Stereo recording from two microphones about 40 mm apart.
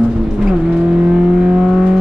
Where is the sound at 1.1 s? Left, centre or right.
Right.